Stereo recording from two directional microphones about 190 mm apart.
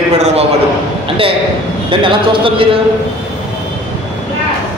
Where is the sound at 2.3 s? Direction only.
25° right (ahead or behind).